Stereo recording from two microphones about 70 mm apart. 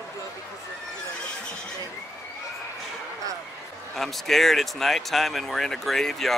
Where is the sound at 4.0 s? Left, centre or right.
Centre.